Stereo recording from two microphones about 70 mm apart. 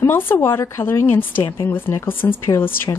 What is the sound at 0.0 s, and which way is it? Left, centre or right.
Speech, left.